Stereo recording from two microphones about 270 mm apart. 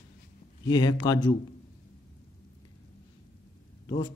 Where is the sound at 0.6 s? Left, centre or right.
Centre.